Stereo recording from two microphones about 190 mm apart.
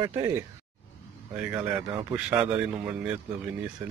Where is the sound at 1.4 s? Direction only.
10° right (ahead or behind).